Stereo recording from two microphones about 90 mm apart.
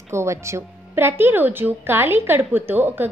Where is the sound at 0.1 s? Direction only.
30° right (ahead or behind).